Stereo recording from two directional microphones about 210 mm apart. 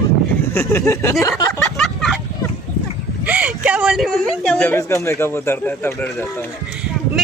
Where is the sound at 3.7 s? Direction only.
5° right (ahead or behind).